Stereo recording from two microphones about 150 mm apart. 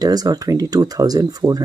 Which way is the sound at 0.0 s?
25° right (ahead or behind).